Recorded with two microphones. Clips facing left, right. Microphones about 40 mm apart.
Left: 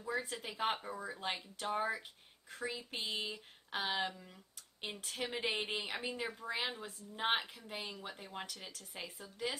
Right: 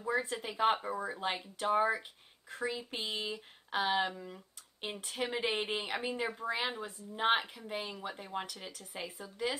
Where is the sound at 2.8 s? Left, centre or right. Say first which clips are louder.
Right 2 dB; centre.